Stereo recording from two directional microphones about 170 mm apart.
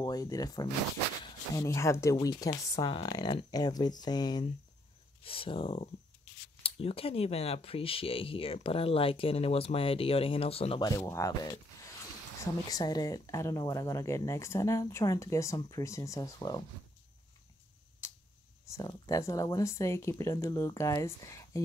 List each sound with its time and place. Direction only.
0.0 s speech: 20° left (ahead or behind)
10.9 s speech: 20° left (ahead or behind)
12.6 s speech: 25° left (ahead or behind)
18.0 s tick-tock: 15° left (ahead or behind)
18.7 s speech: 20° left (ahead or behind)